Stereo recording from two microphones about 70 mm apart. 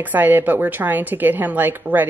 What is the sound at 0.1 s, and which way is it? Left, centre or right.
A woman's voice, right.